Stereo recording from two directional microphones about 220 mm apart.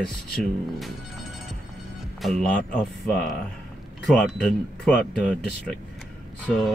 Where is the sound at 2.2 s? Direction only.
5° left (ahead or behind).